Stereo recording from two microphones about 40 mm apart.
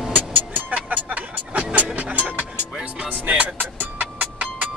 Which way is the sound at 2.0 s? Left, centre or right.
Right.